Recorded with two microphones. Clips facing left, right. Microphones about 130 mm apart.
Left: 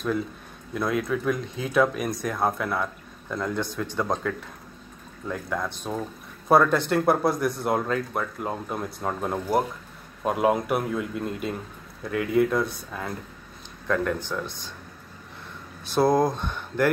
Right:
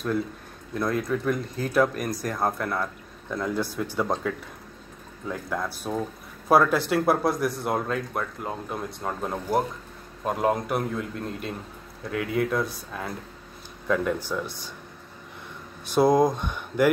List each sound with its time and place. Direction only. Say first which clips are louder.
0.7 s speech: even; centre (ahead or behind)
15.9 s speech: right 1 dB; 15° right (ahead or behind)